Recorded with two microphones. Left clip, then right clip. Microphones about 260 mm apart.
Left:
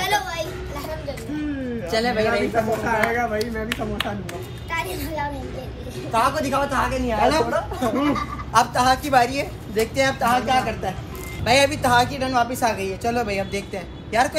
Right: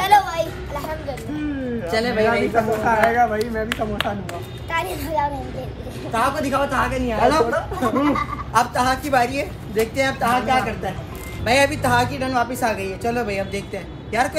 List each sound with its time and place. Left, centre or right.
0.0 s a sound: centre
1.9 s a woman's voice: centre
2.5 s a child's voice: centre
6.1 s a woman's voice: centre
7.9 s speech: centre
8.5 s a woman's voice: centre